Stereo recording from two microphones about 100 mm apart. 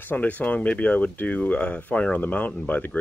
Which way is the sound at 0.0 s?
20° left (ahead or behind).